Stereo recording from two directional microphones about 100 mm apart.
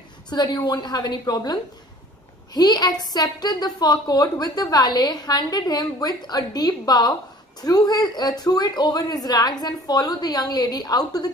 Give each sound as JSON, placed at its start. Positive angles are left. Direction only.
{"t": 0.3, "sound": "a woman's voice", "side_deg": 45}